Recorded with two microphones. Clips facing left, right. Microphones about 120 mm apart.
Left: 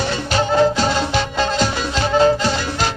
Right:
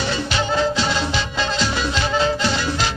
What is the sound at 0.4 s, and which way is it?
Music, 45° left (ahead or behind).